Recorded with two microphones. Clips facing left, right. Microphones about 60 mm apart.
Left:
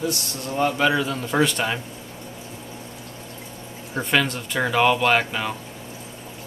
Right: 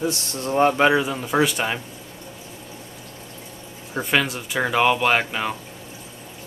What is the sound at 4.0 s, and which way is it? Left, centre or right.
Speech, centre.